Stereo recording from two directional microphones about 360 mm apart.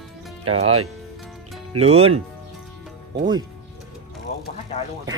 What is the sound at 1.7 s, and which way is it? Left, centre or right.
Speech, centre.